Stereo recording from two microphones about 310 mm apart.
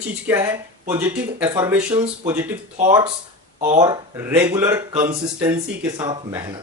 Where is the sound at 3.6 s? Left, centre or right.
Centre.